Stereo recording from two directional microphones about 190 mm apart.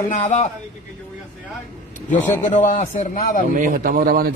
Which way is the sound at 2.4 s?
45° left (ahead or behind).